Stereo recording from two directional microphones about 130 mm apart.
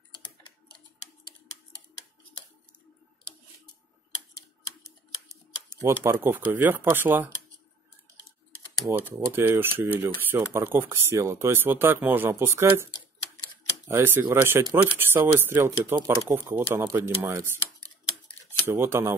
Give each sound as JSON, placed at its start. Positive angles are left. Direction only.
{"t": 5.8, "sound": "speech", "side_deg": -20}
{"t": 8.9, "sound": "speech", "side_deg": -15}
{"t": 18.7, "sound": "speech", "side_deg": -20}